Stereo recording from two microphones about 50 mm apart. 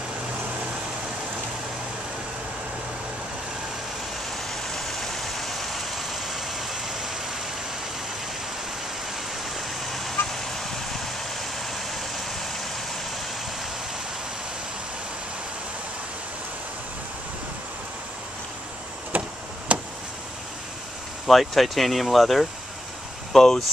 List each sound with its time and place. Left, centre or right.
4.3 s vehicle: centre
9.4 s vehicle: centre
19.1 s a sound: right
19.7 s tick-tock: right
21.3 s speech: centre